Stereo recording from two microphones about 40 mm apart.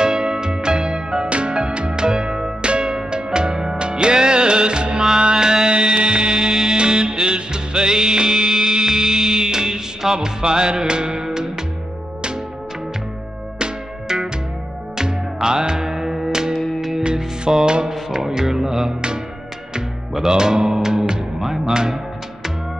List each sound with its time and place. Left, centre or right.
0.0 s music: centre
13.6 s music: right
15.4 s music: centre
16.5 s music: centre
17.0 s music: centre
20.2 s music: centre